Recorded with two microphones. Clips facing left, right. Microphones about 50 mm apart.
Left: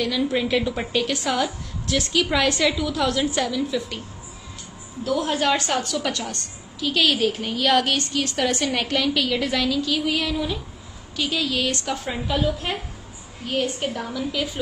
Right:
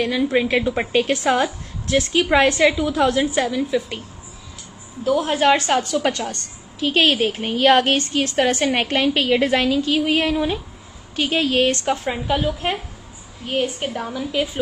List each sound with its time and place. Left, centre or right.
0.0 s a woman's voice: right
5.2 s a woman's voice: right